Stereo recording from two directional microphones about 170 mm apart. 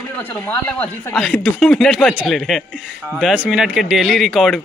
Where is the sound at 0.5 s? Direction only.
10° left (ahead or behind).